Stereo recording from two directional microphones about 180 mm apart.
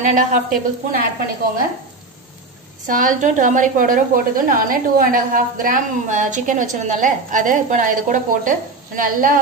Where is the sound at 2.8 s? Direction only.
45° right (ahead or behind).